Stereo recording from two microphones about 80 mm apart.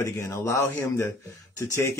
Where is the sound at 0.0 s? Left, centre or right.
Left.